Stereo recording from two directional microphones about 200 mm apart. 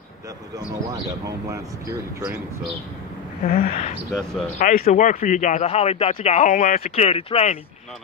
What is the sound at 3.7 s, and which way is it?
Speech, 35° left (ahead or behind).